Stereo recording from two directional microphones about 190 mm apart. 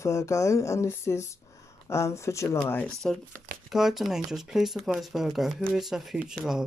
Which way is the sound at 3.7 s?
Centre (ahead or behind).